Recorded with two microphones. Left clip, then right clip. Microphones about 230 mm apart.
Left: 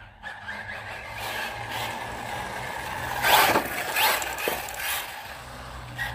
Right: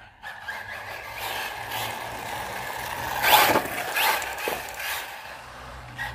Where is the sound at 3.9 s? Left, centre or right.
Centre.